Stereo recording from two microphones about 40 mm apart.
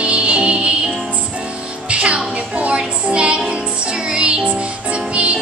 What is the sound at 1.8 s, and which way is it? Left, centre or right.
Music, right.